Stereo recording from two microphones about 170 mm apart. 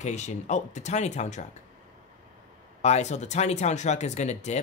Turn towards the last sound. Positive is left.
turn(degrees=40)  # may be behind; listen again after turning